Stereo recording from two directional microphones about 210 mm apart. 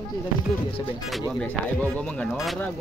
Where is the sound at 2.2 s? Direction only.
5° left (ahead or behind).